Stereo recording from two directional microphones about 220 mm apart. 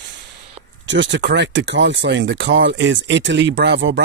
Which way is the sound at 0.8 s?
55° right (ahead or behind).